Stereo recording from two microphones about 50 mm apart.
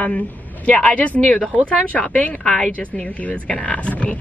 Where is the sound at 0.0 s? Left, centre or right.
Left.